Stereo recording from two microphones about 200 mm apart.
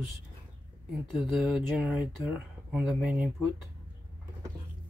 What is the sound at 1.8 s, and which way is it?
Speech, 5° right (ahead or behind).